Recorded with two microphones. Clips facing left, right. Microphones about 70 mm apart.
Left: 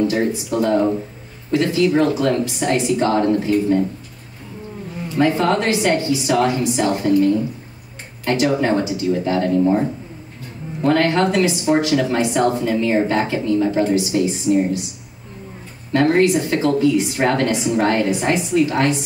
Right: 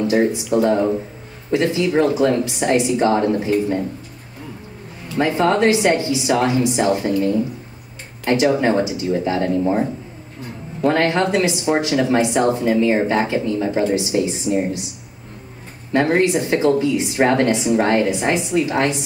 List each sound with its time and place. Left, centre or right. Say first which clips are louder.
0.1 s speech: right 3 dB; right
5.2 s speech: right 1 dB; right
15.9 s speech: left 1 dB; right